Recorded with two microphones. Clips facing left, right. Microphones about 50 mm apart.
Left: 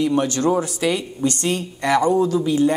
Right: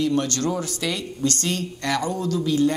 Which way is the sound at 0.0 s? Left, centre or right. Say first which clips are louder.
Left 4 dB; centre.